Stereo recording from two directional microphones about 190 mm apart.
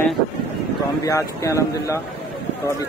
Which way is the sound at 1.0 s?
15° left (ahead or behind).